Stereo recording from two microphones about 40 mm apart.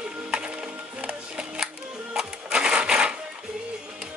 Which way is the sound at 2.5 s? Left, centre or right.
Right.